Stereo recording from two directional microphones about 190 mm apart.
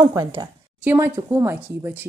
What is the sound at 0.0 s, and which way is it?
A woman's voice, 15° right (ahead or behind).